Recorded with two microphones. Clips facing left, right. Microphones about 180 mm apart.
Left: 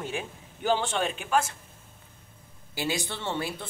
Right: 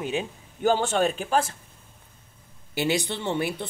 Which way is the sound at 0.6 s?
45° right (ahead or behind).